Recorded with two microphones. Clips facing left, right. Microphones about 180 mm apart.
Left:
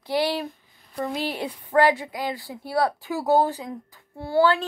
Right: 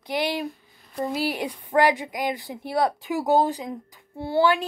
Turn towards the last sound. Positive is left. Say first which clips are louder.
# left 1 dB
turn(degrees=-20)  # may be behind; listen again after turning